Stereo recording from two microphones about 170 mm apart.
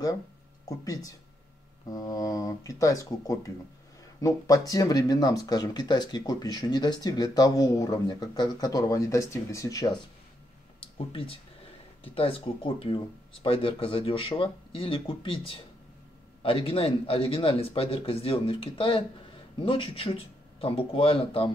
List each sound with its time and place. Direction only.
0.7 s speech: 20° left (ahead or behind)
10.8 s speech: 30° left (ahead or behind)